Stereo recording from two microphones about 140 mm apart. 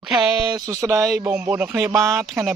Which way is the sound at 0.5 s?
25° right (ahead or behind).